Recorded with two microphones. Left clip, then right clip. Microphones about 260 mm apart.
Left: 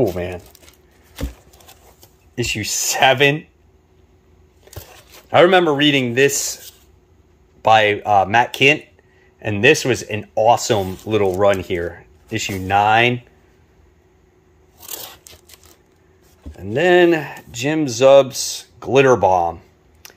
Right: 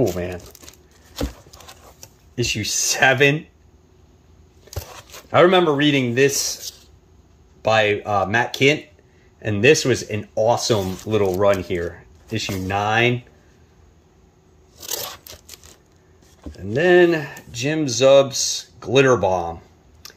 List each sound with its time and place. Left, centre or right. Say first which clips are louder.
0.0 s crumpling: left 2 dB; centre
1.7 s a sound: right 3 dB; centre
5.3 s speech: left 2 dB; centre
16.5 s speech: left 1 dB; centre